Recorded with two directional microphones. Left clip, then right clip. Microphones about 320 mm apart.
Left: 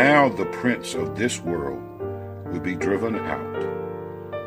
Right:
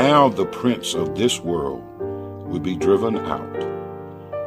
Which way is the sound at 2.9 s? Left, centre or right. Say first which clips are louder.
Right 6 dB; centre.